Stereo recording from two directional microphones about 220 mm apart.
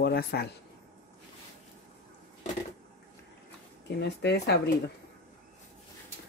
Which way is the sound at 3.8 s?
50° left (ahead or behind).